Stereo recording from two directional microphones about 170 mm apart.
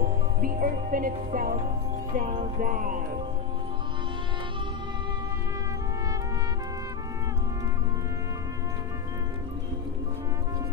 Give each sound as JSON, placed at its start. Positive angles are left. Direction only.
{"t": 0.4, "sound": "speech", "side_deg": -55}
{"t": 2.1, "sound": "music", "side_deg": -50}